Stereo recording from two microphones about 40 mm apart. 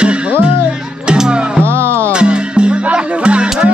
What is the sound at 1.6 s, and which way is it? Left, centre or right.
Music, right.